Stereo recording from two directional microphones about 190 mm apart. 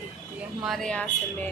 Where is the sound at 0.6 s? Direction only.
Centre (ahead or behind).